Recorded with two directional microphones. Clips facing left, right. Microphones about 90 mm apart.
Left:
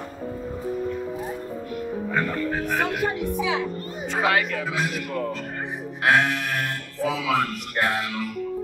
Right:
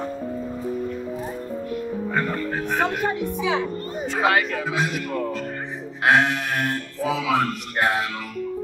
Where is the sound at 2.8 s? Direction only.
40° right (ahead or behind).